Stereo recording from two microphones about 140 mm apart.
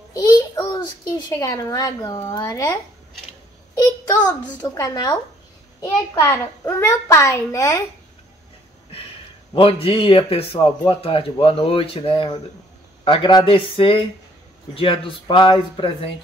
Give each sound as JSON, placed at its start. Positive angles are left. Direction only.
{"t": 0.1, "sound": "a child's voice", "side_deg": 25}
{"t": 3.7, "sound": "a sound", "side_deg": 25}
{"t": 4.6, "sound": "a child's voice", "side_deg": 30}
{"t": 9.5, "sound": "a man's voice", "side_deg": 40}